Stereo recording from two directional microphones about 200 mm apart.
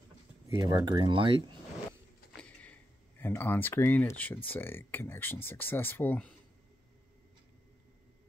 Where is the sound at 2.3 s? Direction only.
5° left (ahead or behind).